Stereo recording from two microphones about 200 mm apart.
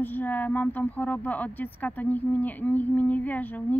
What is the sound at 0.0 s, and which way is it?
A woman's voice, 10° left (ahead or behind).